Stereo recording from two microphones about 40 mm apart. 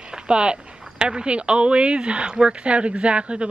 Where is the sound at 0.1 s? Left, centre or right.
Right.